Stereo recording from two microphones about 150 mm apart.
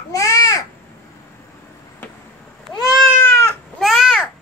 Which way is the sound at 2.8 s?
Centre (ahead or behind).